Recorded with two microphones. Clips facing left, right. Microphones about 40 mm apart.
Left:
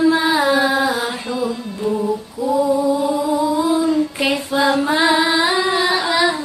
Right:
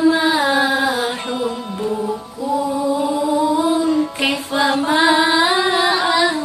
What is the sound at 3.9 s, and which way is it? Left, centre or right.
Female singing, right.